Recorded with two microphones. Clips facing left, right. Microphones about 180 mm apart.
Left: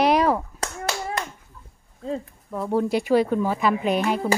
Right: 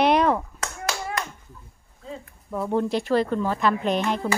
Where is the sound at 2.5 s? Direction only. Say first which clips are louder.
Left 1 dB; 5° left (ahead or behind).